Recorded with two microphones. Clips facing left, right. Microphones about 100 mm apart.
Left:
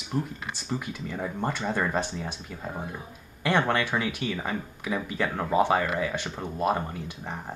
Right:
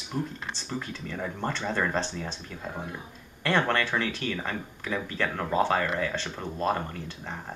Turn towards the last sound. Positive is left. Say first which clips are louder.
# left 2 dB
turn(degrees=15)  # may be behind; listen again after turning